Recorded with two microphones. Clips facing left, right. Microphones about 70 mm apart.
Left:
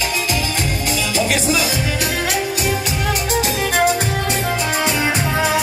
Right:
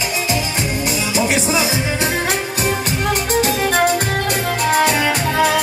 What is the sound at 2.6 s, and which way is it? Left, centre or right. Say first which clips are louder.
Music: right 1 dB; right.